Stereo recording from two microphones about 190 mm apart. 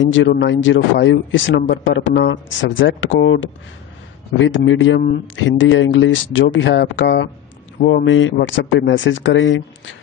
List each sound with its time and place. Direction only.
0.0 s speech: 85° left
6.4 s speech: 70° left (ahead or behind)
7.8 s speech: 75° left (ahead or behind)